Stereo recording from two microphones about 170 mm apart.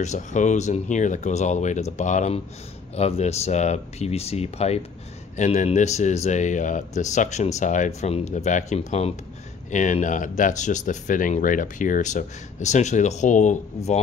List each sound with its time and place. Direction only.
0.0 s speech: 45° left (ahead or behind)